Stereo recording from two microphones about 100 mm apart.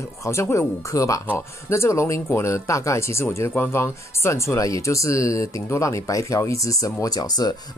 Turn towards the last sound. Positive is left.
turn(degrees=40)  # may be behind; listen again after turning